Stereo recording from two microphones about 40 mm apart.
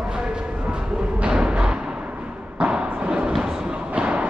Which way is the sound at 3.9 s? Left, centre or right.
Right.